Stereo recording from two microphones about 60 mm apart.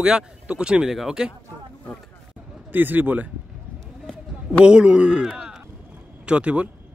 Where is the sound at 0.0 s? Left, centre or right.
Centre.